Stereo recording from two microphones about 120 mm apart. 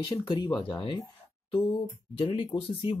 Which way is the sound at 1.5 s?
45° left (ahead or behind).